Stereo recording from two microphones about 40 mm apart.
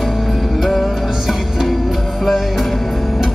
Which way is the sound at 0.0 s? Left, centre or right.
Centre.